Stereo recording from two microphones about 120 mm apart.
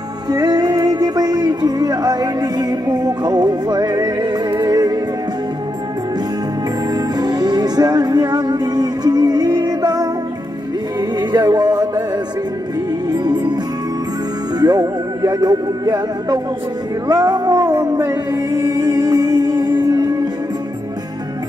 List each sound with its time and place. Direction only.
0.3 s music: 35° right (ahead or behind)
6.9 s music: 35° right (ahead or behind)
13.1 s music: 35° right (ahead or behind)
14.6 s music: 30° right (ahead or behind)